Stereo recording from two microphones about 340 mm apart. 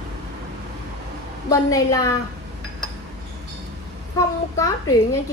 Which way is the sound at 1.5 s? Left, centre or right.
Centre.